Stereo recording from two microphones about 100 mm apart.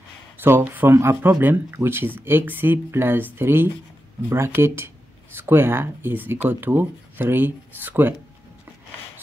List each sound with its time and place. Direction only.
0.4 s speech: 20° right (ahead or behind)